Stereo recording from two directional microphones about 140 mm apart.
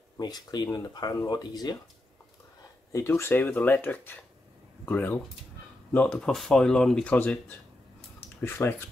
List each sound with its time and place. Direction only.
0.2 s speech: 30° left (ahead or behind)
2.9 s speech: 20° left (ahead or behind)